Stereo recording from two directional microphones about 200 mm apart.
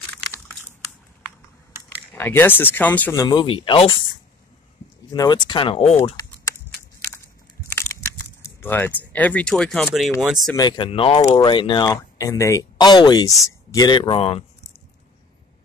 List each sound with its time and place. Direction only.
2.1 s speech: 10° left (ahead or behind); by 4.0 s 25° left (ahead or behind)
5.1 s speech: 20° left (ahead or behind)
7.9 s a sound: 10° left (ahead or behind)
10.2 s speech: centre (ahead or behind)
10.5 s speech: 20° left (ahead or behind)